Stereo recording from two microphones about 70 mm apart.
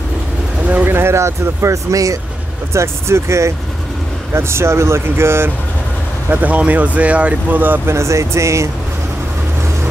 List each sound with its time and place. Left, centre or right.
0.8 s speech: right
6.3 s speech: right
7.9 s speech: right